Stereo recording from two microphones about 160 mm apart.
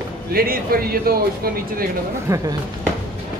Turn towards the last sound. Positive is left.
turn(degrees=-20)  # may be behind; listen again after turning